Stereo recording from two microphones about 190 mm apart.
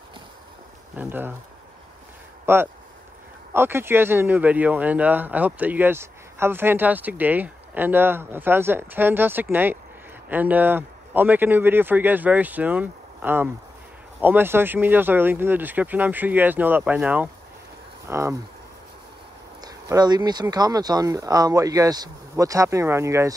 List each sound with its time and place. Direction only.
0.9 s speech: 10° right (ahead or behind)
2.4 s speech: 10° right (ahead or behind)
19.6 s speech: 20° right (ahead or behind)